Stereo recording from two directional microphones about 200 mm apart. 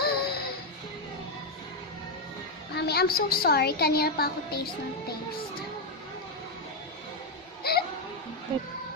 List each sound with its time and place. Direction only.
0.0 s music: 50° left (ahead or behind)
2.7 s a woman's voice: 55° left (ahead or behind)
7.6 s a sound: 50° left (ahead or behind)